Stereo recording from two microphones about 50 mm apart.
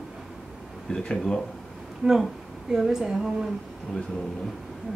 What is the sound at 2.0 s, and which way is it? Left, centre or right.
Speech, right.